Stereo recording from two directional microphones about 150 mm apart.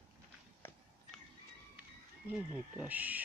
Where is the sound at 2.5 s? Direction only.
10° right (ahead or behind).